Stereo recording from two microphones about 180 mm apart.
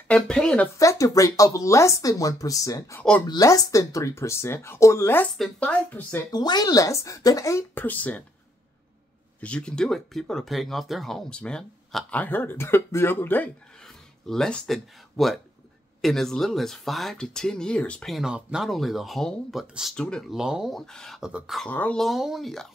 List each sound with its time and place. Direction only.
0.1 s speech: 5° left (ahead or behind)
0.7 s speech: 20° left (ahead or behind)
3.3 s speech: 20° left (ahead or behind)
6.3 s speech: 20° left (ahead or behind)
9.4 s speech: 5° left (ahead or behind)